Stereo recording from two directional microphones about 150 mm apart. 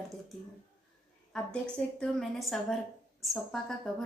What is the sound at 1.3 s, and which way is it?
A woman's voice, 5° left (ahead or behind).